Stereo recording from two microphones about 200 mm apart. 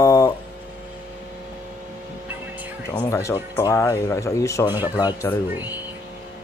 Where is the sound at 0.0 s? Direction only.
15° left (ahead or behind).